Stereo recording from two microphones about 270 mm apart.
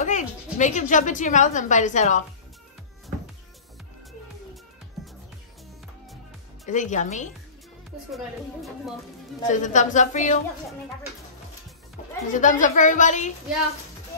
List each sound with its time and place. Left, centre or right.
0.0 s speech: left
6.6 s a woman's voice: left
9.5 s a woman's voice: left
12.3 s a woman's voice: left